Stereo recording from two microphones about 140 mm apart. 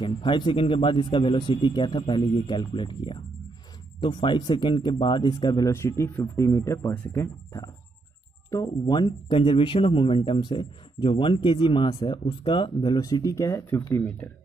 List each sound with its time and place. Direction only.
0.0 s speech: 35° left (ahead or behind)
5.7 s a man's voice: 20° left (ahead or behind)